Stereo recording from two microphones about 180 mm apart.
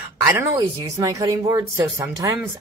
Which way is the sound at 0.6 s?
20° right (ahead or behind).